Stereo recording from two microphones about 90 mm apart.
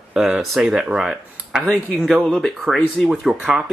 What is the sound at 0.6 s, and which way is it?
Speech, 10° right (ahead or behind).